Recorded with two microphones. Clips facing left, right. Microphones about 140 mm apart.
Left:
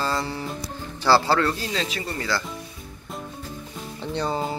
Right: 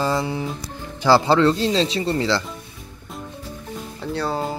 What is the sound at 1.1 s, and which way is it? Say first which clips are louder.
Speech: right 4 dB; 20° right (ahead or behind).